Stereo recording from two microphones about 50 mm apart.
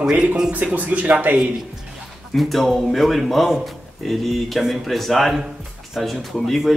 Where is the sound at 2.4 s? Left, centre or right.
Centre.